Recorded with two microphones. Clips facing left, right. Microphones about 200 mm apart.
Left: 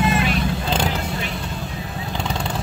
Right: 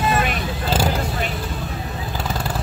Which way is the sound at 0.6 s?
5° right (ahead or behind).